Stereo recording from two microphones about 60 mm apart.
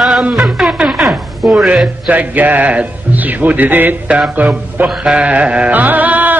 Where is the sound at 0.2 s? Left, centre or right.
Centre.